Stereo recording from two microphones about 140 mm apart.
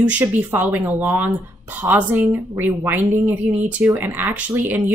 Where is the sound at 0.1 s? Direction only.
15° right (ahead or behind).